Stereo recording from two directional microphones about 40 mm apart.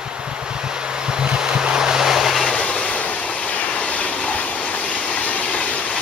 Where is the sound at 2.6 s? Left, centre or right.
Left.